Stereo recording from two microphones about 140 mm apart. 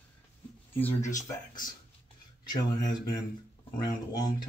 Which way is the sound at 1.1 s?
25° left (ahead or behind).